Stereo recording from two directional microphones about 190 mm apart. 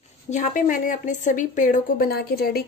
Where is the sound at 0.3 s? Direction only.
40° left (ahead or behind).